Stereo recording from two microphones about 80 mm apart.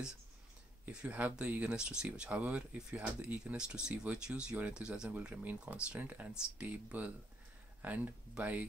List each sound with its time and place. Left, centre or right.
0.8 s speech: centre